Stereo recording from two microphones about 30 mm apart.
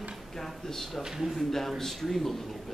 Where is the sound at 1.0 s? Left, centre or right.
Centre.